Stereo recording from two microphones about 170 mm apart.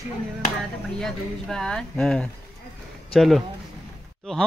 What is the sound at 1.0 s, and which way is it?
A man's voice, centre (ahead or behind).